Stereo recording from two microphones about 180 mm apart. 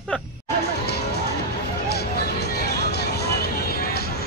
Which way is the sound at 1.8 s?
65° left (ahead or behind).